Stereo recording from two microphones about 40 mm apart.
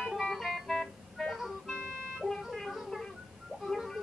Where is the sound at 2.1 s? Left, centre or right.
Centre.